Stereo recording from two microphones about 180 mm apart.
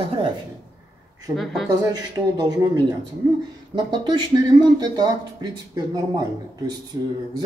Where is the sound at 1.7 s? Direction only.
20° right (ahead or behind).